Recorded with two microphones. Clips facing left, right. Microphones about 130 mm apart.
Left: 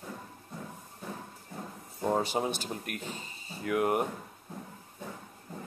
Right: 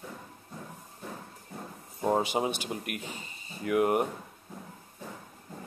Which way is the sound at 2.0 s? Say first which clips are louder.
Right 2 dB; 15° right (ahead or behind).